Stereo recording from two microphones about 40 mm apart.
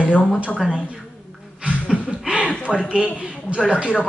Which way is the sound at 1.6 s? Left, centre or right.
Right.